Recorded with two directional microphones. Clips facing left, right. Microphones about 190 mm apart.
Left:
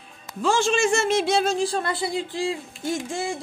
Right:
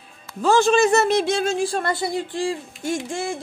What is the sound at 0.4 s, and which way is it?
Speech, 40° right (ahead or behind).